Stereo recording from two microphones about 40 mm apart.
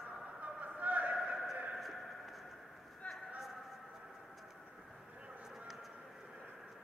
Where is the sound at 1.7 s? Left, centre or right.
Centre.